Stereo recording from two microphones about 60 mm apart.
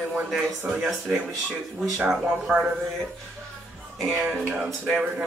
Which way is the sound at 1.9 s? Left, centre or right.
Centre.